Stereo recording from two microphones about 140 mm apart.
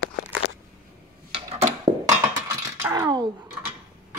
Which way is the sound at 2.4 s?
20° right (ahead or behind).